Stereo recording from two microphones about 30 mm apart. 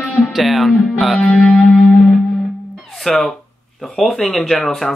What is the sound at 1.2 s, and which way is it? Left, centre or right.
Music, left.